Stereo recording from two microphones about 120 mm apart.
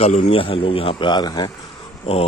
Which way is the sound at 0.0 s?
55° left (ahead or behind).